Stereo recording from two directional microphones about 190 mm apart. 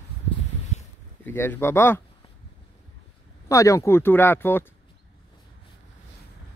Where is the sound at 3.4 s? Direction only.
15° left (ahead or behind).